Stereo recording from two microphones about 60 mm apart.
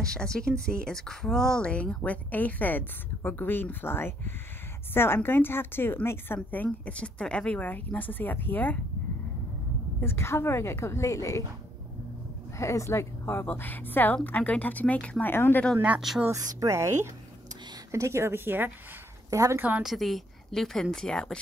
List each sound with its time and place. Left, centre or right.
0.0 s a woman's voice: centre; by 6.6 s left
6.6 s speech: centre
9.9 s a woman's voice: left
12.5 s a woman's voice: left
15.3 s a woman's voice: left
16.5 s a woman's voice: right
19.3 s a woman's voice: right
19.8 s a woman's voice: centre